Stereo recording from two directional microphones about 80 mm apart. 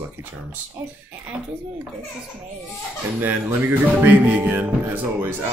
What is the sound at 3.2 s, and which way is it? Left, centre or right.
Speech, right.